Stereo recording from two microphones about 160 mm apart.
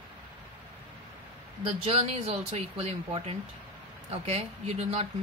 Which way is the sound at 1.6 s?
35° right (ahead or behind).